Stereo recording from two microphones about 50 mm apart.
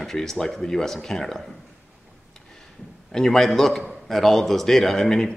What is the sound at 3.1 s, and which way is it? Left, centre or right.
A man's voice, centre.